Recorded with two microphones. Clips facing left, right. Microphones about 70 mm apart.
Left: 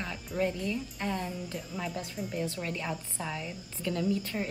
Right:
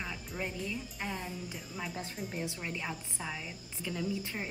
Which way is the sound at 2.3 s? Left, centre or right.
Centre.